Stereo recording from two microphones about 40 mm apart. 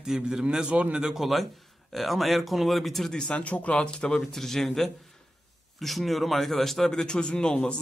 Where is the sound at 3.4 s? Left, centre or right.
Left.